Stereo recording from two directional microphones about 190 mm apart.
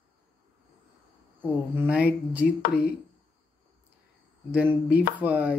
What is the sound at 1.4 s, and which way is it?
Speech, 10° right (ahead or behind).